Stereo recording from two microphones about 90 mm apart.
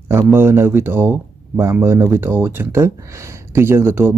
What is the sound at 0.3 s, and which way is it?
Speech, 25° right (ahead or behind).